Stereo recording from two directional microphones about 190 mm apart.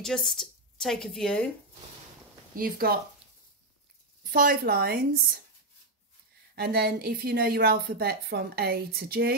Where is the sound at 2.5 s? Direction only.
50° right (ahead or behind).